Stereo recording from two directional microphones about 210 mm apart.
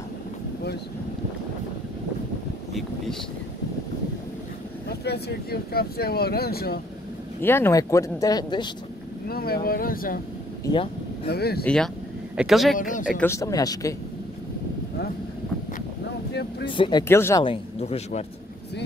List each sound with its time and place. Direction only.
2.7 s speech: centre (ahead or behind)
4.8 s speech: 50° left (ahead or behind)
7.4 s speech: 10° left (ahead or behind)
9.3 s speech: 45° left (ahead or behind)
10.6 s speech: 20° left (ahead or behind)
11.2 s speech: 50° left (ahead or behind)
11.6 s speech: 5° left (ahead or behind)
12.7 s speech: 40° left (ahead or behind)
13.2 s speech: 15° left (ahead or behind)
16.6 s speech: 25° left (ahead or behind)
17.1 s speech: 15° left (ahead or behind)
17.5 s speech: 30° left (ahead or behind)